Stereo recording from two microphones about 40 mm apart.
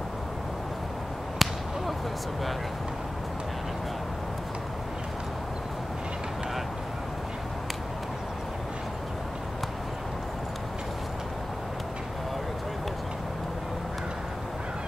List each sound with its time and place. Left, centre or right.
1.4 s whip: centre